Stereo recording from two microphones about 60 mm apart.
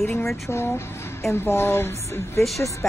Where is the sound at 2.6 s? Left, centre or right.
Left.